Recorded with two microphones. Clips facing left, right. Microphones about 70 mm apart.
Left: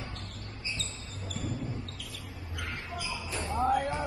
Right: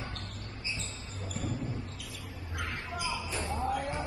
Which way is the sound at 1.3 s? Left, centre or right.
Right.